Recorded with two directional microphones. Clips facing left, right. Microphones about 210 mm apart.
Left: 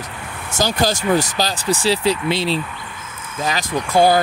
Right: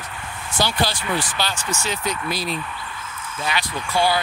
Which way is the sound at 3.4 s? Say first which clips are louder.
Left 5 dB; 40° left (ahead or behind).